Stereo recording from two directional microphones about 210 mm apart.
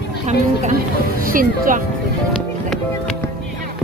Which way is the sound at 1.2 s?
40° right (ahead or behind).